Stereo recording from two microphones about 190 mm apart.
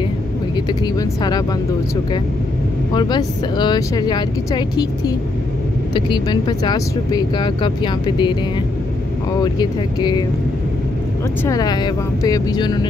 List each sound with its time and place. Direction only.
0.7 s speech: 20° left (ahead or behind)
2.9 s speech: 25° left (ahead or behind)
9.4 s speech: 20° left (ahead or behind)
11.4 s speech: 20° left (ahead or behind)